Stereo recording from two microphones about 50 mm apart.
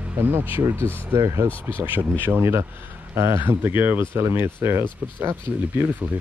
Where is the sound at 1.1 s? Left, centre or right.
Right.